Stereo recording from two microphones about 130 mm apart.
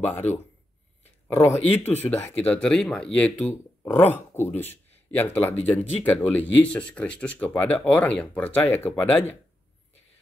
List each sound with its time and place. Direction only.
0.0 s speech: 15° left (ahead or behind)
1.2 s a sound: 20° left (ahead or behind)
1.8 s speech: 15° left (ahead or behind)